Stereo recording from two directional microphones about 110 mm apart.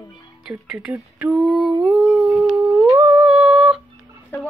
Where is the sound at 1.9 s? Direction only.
10° right (ahead or behind).